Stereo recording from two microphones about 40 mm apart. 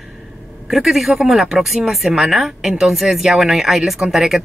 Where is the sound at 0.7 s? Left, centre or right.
Centre.